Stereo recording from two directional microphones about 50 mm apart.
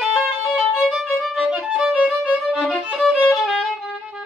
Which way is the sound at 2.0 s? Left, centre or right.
Centre.